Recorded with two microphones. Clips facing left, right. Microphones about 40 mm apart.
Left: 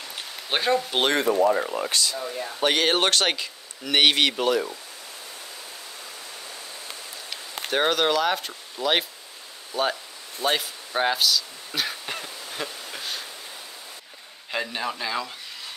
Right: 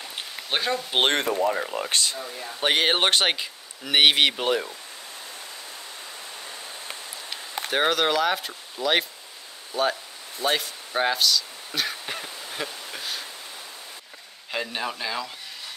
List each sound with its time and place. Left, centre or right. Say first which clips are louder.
0.5 s speech: left 3 dB; centre
1.0 s speech: even; right
1.5 s speech: left 3 dB; centre
1.9 s speech: even; right
2.1 s speech: left 4 dB; centre
2.6 s speech: even; centre
7.2 s speech: right 1 dB; centre
10.4 s a sound: even; centre
14.7 s speech: left 1 dB; centre